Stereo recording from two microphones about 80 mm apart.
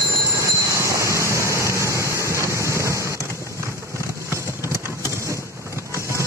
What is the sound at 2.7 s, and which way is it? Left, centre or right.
Vehicle, right.